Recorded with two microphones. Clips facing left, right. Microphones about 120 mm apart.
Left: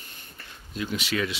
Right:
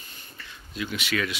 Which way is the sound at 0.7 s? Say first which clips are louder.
Left 1 dB; 35° left (ahead or behind).